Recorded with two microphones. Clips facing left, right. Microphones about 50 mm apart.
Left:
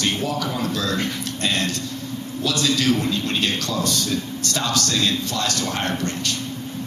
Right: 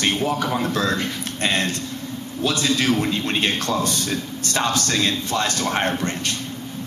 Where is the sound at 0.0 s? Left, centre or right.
Right.